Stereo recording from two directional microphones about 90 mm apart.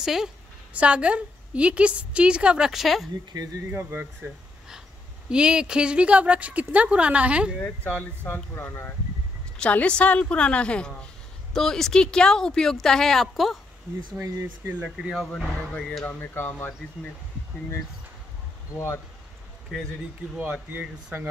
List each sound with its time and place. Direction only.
0.0 s a woman's voice: 5° right (ahead or behind)
3.7 s speech: 20° right (ahead or behind)
5.3 s a woman's voice: 10° right (ahead or behind)
7.6 s speech: 15° left (ahead or behind)
9.6 s a woman's voice: 15° left (ahead or behind)
14.2 s speech: 35° right (ahead or behind)
15.0 s a woman's voice: 5° right (ahead or behind)
16.1 s speech: 20° left (ahead or behind)
19.7 s speech: centre (ahead or behind)
20.3 s a woman's voice: 15° right (ahead or behind)